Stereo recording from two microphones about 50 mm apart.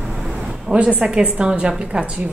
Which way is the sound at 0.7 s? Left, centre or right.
Right.